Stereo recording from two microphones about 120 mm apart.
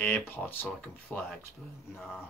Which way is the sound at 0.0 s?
15° left (ahead or behind).